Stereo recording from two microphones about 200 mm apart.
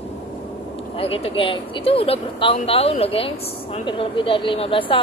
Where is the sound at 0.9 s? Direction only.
30° left (ahead or behind).